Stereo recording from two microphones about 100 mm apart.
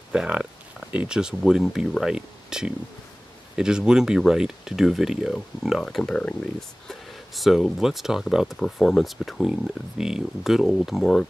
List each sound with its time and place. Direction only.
0.1 s speech: 10° right (ahead or behind)